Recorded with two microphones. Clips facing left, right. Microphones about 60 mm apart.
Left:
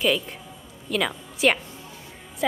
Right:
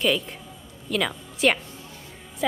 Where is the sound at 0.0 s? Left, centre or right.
Centre.